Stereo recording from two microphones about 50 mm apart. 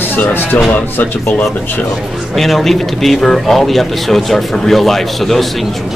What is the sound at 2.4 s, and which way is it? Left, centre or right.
Speech, centre.